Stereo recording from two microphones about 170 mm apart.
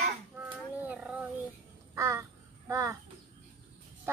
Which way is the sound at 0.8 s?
5° right (ahead or behind).